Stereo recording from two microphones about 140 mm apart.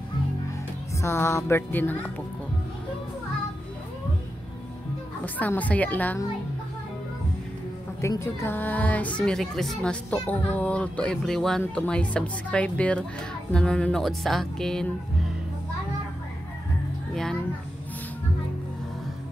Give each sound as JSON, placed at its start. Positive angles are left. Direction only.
{"t": 1.0, "sound": "speech", "side_deg": 20}
{"t": 5.2, "sound": "speech", "side_deg": 10}
{"t": 8.0, "sound": "speech", "side_deg": 20}
{"t": 17.1, "sound": "children playing", "side_deg": 5}